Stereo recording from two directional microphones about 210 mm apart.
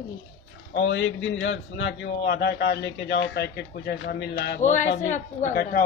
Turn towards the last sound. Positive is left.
turn(degrees=40)  # may be behind; listen again after turning